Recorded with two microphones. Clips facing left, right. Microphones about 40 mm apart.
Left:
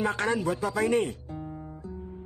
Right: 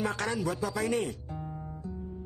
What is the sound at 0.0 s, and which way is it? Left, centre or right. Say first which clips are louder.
Speech: left 4 dB; left.